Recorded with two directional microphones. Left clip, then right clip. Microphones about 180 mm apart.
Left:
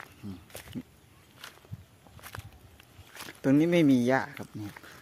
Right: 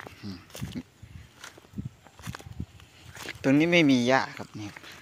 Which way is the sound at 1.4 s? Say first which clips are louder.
Right 4 dB; 50° right (ahead or behind).